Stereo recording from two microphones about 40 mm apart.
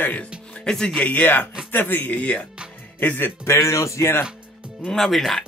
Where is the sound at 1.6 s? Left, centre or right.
Left.